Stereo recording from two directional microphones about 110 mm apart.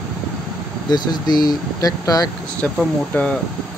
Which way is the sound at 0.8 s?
40° left (ahead or behind).